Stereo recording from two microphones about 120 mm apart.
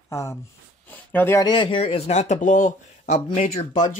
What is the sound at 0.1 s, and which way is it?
Speech, 25° left (ahead or behind).